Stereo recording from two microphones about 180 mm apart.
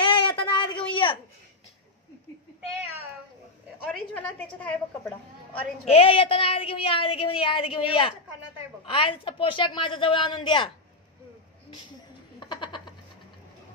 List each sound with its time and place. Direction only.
0.1 s a sound: 25° left (ahead or behind)
3.9 s a woman's voice: 5° left (ahead or behind)
5.9 s speech: 30° left (ahead or behind)
12.4 s frog: 25° left (ahead or behind)